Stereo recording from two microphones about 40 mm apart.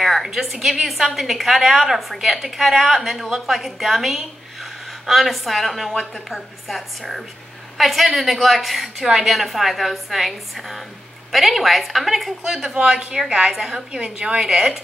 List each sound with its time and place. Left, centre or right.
0.0 s a sound: centre
0.7 s a woman's voice: centre
12.7 s a woman's voice: right